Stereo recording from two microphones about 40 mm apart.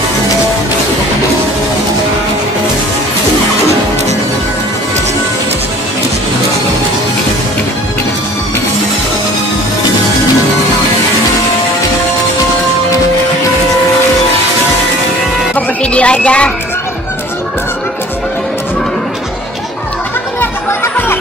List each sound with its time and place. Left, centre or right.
15.8 s speech: left
20.3 s music: left